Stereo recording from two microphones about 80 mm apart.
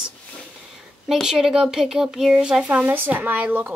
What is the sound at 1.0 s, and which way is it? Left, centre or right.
Speech, centre.